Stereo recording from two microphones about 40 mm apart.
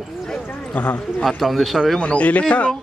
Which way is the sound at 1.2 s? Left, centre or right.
Centre.